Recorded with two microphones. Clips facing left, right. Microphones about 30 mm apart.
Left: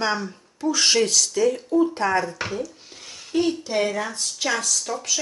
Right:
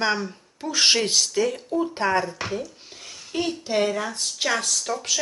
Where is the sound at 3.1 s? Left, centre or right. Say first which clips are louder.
Left 1 dB; centre.